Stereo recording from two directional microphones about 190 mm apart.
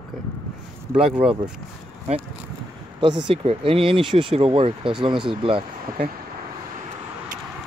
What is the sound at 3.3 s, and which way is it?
Speech, 30° right (ahead or behind).